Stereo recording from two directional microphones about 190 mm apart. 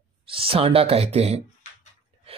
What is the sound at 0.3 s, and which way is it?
Speech, 30° right (ahead or behind).